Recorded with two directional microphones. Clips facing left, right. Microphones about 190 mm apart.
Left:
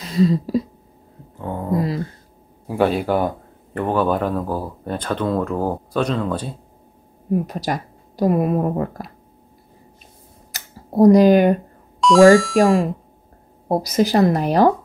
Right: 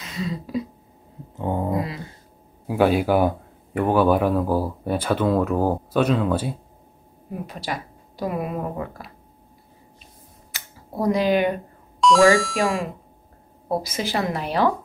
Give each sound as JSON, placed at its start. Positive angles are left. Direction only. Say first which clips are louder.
{"t": 0.0, "sound": "speech", "louder": "left 12 dB", "side_deg": 35}
{"t": 1.4, "sound": "speech", "louder": "even", "side_deg": -20}
{"t": 2.7, "sound": "speech", "louder": "even", "side_deg": -5}
{"t": 7.4, "sound": "speech", "louder": "left 6 dB", "side_deg": 40}
{"t": 10.5, "sound": "a sound", "louder": "left 10 dB", "side_deg": 40}
{"t": 12.0, "sound": "speech", "louder": "left 5 dB", "side_deg": 0}
{"t": 13.7, "sound": "speech", "louder": "left 7 dB", "side_deg": 40}